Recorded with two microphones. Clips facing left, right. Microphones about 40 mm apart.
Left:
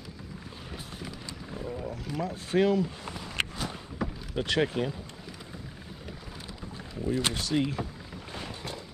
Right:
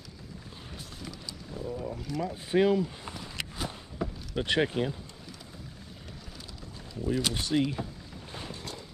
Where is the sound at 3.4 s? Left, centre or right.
Left.